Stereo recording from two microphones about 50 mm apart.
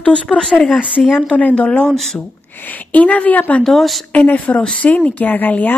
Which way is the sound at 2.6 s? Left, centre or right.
Left.